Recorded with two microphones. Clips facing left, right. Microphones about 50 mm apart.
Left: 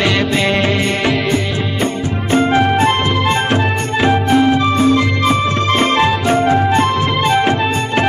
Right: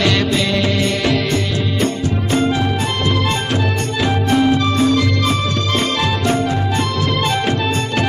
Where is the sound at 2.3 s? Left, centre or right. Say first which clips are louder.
Left 6 dB; left.